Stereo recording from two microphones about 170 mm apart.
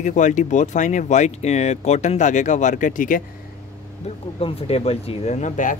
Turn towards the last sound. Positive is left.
turn(degrees=45)  # may be behind; listen again after turning